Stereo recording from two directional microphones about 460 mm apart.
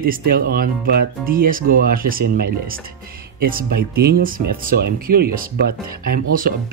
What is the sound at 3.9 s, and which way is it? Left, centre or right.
Speech, centre.